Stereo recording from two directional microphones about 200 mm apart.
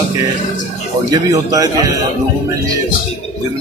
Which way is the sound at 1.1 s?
20° right (ahead or behind).